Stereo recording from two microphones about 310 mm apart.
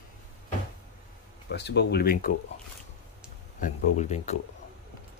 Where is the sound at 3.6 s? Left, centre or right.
Left.